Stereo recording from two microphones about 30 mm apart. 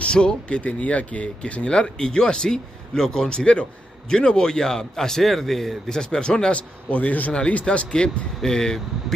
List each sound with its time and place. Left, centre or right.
0.0 s speech: left
0.6 s a man's voice: left
1.2 s speech: left; by 5.2 s centre
5.2 s a man's voice: centre
5.9 s speech: left
6.5 s a man's voice: left
7.7 s speech: centre